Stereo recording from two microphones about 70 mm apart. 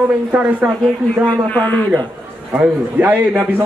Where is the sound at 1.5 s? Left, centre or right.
Left.